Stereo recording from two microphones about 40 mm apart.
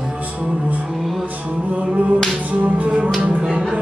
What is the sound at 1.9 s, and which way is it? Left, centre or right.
Music, right.